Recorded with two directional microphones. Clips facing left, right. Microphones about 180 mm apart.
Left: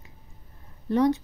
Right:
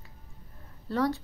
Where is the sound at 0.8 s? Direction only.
20° left (ahead or behind).